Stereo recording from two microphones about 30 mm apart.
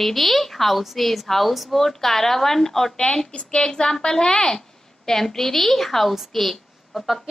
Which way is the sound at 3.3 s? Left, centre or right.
Left.